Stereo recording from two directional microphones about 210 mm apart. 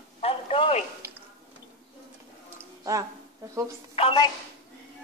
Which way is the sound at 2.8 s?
15° right (ahead or behind).